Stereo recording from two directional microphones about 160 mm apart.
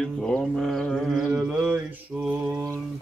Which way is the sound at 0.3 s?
5° left (ahead or behind).